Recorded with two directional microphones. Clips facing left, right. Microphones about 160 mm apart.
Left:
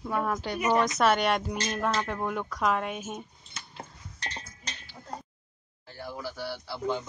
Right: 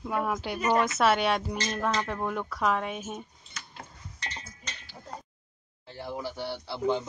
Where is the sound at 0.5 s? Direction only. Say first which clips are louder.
Even; 5° left (ahead or behind).